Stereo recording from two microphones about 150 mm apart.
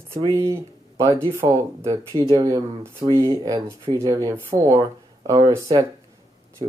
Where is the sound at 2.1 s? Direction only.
35° right (ahead or behind).